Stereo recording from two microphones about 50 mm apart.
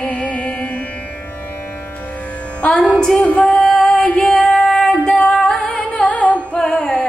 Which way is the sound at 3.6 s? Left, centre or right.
Centre.